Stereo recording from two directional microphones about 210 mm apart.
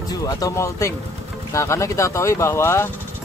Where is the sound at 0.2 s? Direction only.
15° left (ahead or behind).